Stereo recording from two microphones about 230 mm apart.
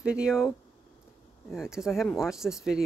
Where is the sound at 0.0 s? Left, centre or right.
Centre.